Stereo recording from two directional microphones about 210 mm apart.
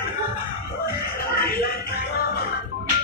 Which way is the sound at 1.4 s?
45° left (ahead or behind).